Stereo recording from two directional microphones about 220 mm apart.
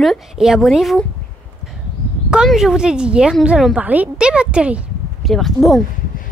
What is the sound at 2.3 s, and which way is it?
A woman's voice, centre (ahead or behind).